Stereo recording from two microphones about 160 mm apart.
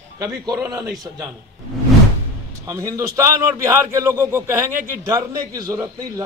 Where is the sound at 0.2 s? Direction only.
20° right (ahead or behind).